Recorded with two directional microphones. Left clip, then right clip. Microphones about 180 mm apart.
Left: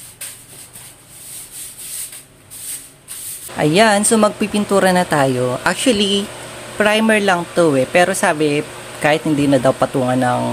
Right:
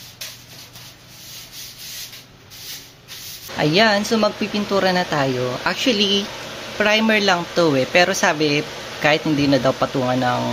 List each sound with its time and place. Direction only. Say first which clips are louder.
3.5 s speech: left 3 dB; 20° left (ahead or behind)